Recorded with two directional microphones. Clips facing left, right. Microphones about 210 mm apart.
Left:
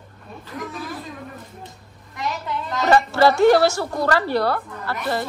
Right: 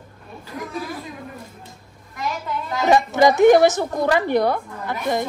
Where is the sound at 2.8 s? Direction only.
15° right (ahead or behind).